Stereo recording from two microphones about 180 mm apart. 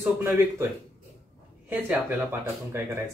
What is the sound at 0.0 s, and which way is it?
Speech, 15° right (ahead or behind).